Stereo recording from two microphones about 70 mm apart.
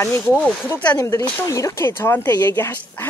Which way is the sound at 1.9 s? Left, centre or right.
Left.